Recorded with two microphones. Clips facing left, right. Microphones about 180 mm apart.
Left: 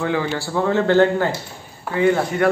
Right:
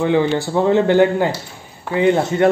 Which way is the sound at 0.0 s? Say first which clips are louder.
Right 6 dB; 20° right (ahead or behind).